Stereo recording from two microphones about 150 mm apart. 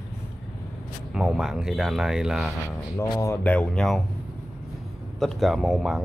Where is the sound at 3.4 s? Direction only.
5° left (ahead or behind).